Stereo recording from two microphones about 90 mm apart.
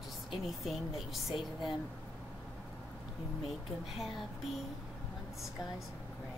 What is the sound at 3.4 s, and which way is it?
Speech, centre (ahead or behind).